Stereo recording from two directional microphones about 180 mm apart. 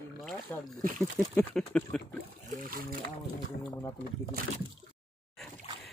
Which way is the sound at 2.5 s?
50° right (ahead or behind).